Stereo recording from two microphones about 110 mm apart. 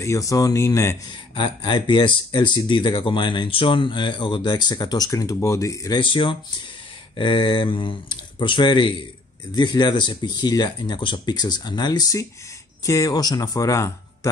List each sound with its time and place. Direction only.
0.0 s speech: 30° left (ahead or behind)
1.0 s speech: 45° left (ahead or behind)
5.9 s speech: 50° left (ahead or behind); by 14.3 s 30° left (ahead or behind)